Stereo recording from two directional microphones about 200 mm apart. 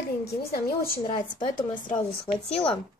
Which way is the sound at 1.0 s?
25° left (ahead or behind).